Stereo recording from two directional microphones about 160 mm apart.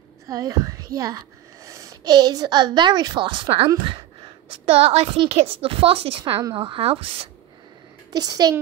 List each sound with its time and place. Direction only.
0.3 s a woman's voice: 20° right (ahead or behind)
8.1 s a child's voice: 25° right (ahead or behind)